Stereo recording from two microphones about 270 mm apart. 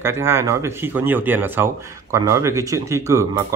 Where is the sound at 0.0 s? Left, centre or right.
Centre.